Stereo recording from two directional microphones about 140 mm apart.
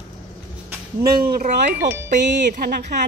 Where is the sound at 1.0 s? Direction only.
90° right; by 2.7 s 65° right (ahead or behind).